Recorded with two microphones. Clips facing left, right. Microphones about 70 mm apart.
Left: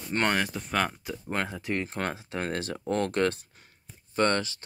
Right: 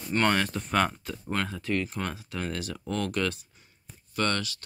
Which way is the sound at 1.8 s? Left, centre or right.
Left.